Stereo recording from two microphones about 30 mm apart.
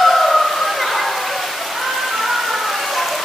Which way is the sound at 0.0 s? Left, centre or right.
Centre.